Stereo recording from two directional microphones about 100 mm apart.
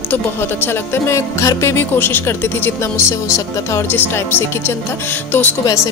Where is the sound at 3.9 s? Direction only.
20° left (ahead or behind).